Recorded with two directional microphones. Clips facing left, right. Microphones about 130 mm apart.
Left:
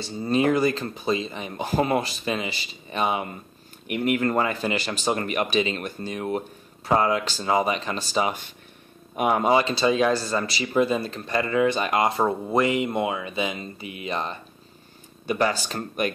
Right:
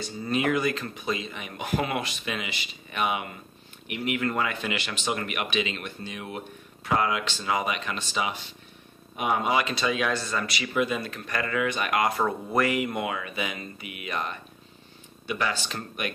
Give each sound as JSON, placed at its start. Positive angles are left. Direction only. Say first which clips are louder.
{"t": 0.0, "sound": "speech", "louder": "left 5 dB", "side_deg": 30}
{"t": 3.8, "sound": "speech", "louder": "left 5 dB", "side_deg": 45}
{"t": 15.2, "sound": "speech", "louder": "left 6 dB", "side_deg": 40}